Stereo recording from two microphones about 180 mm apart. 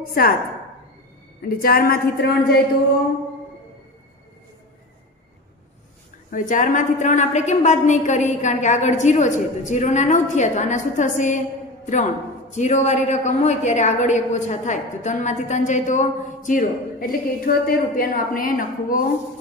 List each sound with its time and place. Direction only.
0.0 s a woman's voice: 55° left (ahead or behind)
1.4 s a woman's voice: 55° left (ahead or behind)
6.3 s a woman's voice: 45° left (ahead or behind)